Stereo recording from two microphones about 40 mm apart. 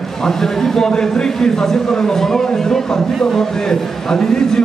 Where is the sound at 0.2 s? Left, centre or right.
Centre.